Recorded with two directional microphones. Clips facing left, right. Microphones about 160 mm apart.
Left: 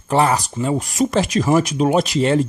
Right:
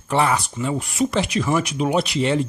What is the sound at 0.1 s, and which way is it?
Speech, 40° left (ahead or behind).